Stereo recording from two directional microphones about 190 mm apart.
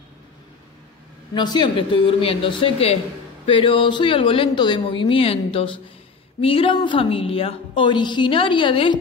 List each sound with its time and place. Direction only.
1.3 s a woman's voice: 25° left (ahead or behind)